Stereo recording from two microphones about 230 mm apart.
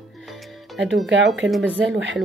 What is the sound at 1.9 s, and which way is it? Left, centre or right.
Speech, right.